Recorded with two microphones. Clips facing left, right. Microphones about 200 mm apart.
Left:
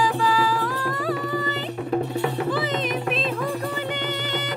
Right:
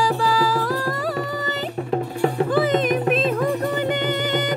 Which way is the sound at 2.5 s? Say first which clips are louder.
Right 6 dB; 50° right (ahead or behind).